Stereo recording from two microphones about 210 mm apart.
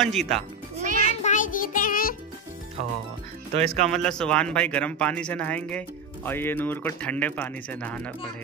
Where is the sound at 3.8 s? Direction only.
5° left (ahead or behind).